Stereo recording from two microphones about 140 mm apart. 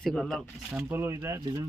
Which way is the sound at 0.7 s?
15° right (ahead or behind).